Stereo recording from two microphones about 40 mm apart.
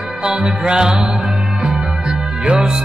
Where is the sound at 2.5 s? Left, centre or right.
Right.